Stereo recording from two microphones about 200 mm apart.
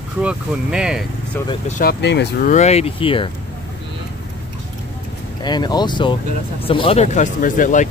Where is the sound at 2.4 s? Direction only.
35° left (ahead or behind).